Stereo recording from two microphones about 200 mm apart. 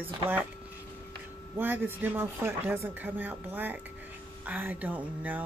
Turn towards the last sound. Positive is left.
turn(degrees=-10)  # may be behind; listen again after turning